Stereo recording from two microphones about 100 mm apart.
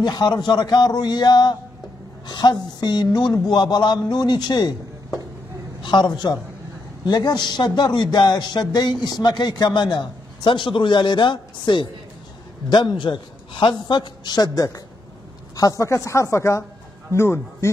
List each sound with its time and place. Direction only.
0.0 s a man's voice: 45° left (ahead or behind)
5.8 s a man's voice: 45° left (ahead or behind); by 17.6 s 30° left (ahead or behind)